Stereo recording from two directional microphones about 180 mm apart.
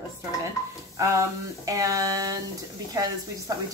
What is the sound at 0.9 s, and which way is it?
Speech, 15° right (ahead or behind).